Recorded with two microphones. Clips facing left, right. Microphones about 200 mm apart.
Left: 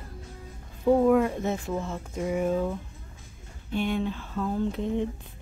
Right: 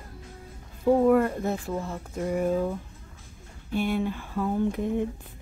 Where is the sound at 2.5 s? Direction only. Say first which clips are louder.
Right 1 dB; 10° right (ahead or behind).